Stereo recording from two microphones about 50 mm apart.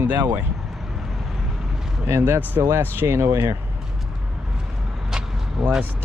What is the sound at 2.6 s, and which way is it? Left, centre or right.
Speech, right.